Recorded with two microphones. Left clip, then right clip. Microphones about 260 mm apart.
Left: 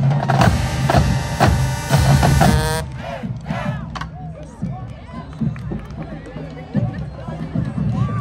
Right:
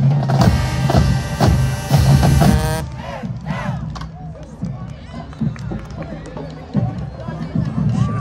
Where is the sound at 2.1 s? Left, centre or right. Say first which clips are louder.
Left 1 dB; left.